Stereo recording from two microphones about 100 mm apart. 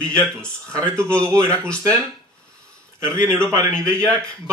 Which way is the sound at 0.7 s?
30° right (ahead or behind).